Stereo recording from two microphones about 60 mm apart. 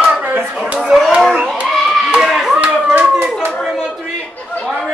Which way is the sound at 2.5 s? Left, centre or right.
Right.